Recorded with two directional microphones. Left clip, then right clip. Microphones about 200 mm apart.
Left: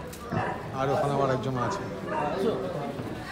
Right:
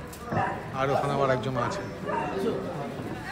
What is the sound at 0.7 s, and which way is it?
Speech, 15° left (ahead or behind).